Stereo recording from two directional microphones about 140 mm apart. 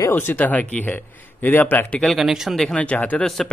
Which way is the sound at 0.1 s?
15° left (ahead or behind).